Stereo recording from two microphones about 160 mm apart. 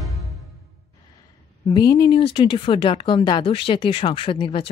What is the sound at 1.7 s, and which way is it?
Speech, 25° left (ahead or behind).